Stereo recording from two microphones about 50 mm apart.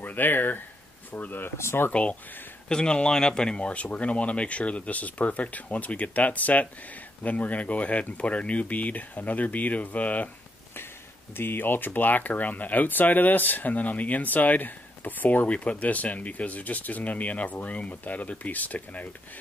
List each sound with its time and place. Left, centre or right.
0.0 s speech: left
1.6 s speech: left
1.9 s speech: left
11.3 s speech: left